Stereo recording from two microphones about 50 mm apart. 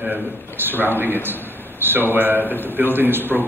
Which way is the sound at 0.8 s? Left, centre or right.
Right.